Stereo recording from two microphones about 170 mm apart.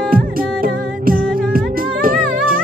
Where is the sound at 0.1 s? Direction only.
60° right (ahead or behind).